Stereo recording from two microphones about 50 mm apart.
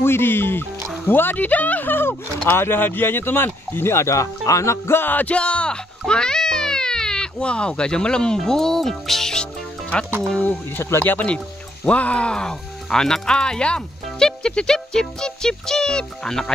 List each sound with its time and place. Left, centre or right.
0.0 s speech: left
4.9 s speech: left; by 10.1 s centre
10.8 s speech: left
11.2 s speech: left
14.2 s music: centre